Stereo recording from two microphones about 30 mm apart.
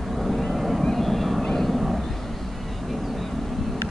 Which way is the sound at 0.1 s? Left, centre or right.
Centre.